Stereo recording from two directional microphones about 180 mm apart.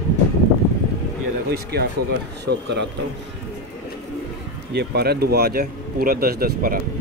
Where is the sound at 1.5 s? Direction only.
60° right (ahead or behind).